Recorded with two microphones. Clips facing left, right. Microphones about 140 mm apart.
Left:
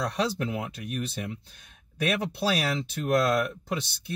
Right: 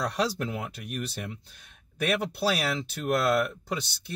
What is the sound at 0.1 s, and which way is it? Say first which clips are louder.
Speech: left 1 dB; centre (ahead or behind).